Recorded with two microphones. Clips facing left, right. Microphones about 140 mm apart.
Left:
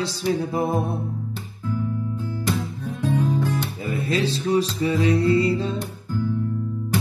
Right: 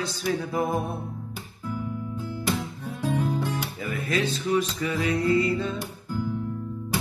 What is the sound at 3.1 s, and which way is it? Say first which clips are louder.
Guitar: left 5 dB; 10° right (ahead or behind).